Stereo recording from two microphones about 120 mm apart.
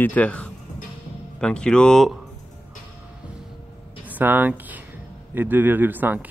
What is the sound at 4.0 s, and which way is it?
A man's voice, 15° right (ahead or behind).